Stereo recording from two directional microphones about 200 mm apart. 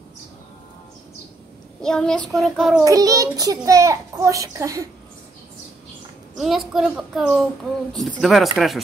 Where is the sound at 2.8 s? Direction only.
15° right (ahead or behind).